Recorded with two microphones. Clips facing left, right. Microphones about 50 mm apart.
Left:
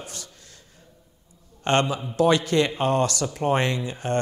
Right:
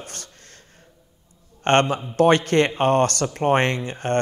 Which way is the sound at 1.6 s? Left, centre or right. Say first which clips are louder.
Right 4 dB; right.